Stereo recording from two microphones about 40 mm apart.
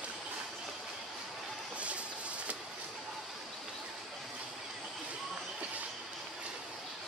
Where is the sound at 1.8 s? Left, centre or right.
Right.